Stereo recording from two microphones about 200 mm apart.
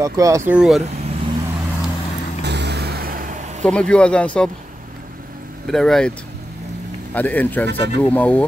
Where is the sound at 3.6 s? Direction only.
5° left (ahead or behind).